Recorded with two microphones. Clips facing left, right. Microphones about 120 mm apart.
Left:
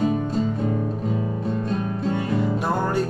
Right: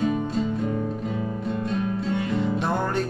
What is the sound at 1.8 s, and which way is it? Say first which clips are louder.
Music: left 1 dB; 40° left (ahead or behind).